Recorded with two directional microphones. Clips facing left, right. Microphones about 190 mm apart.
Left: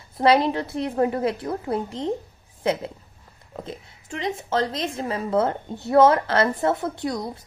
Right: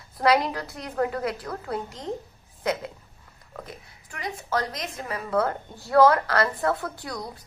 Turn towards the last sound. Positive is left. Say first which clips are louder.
# left 7 dB
turn(degrees=25)  # may be behind; listen again after turning